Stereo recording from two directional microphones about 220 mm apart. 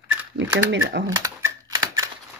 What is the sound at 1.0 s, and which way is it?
Typewriter, 15° right (ahead or behind).